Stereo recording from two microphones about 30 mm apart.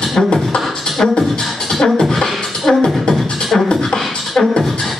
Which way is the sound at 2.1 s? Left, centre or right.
Centre.